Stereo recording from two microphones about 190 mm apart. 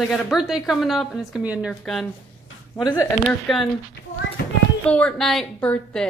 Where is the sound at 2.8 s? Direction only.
20° left (ahead or behind).